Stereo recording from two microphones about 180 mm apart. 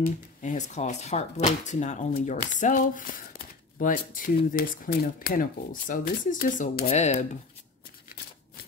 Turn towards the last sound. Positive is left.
turn(degrees=35)  # may be behind; listen again after turning